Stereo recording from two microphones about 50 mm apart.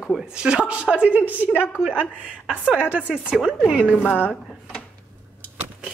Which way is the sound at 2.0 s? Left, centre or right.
Right.